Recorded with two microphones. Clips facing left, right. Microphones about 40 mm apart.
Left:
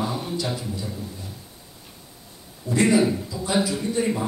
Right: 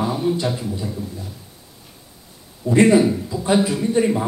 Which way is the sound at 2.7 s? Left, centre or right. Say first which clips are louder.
Right 5 dB; right.